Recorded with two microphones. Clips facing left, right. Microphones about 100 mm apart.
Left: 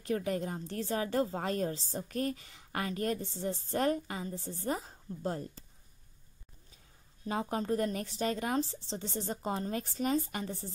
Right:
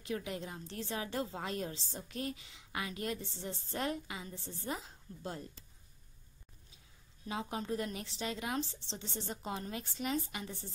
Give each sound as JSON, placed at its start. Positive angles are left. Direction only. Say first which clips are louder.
{"t": 0.0, "sound": "a woman's voice", "louder": "left 7 dB", "side_deg": 45}
{"t": 7.2, "sound": "a woman's voice", "louder": "left 5 dB", "side_deg": 45}